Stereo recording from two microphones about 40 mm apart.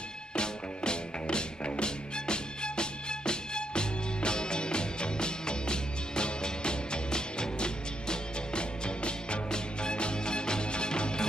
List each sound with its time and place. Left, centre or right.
0.4 s music: left